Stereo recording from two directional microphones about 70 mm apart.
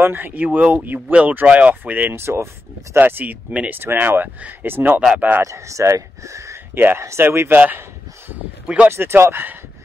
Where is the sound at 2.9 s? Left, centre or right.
Right.